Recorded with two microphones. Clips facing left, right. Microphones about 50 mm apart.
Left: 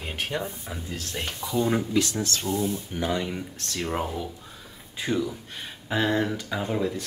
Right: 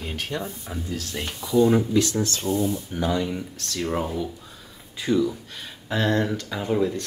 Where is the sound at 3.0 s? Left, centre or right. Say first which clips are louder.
Right 3 dB; centre.